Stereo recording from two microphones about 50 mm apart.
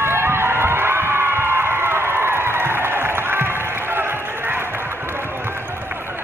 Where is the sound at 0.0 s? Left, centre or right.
Right.